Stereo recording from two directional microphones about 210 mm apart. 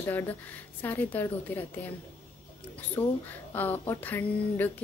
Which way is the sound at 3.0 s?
15° left (ahead or behind).